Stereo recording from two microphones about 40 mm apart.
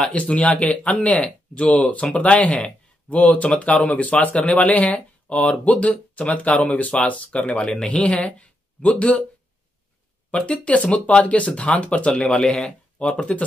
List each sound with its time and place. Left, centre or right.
0.1 s speech: left
10.3 s speech: left
10.6 s speech: left
12.1 s speech: left